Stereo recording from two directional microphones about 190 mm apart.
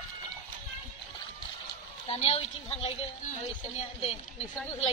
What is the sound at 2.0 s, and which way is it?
Speech, 35° left (ahead or behind).